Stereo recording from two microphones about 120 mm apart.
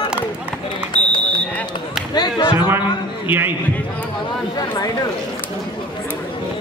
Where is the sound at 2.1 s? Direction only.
40° left (ahead or behind).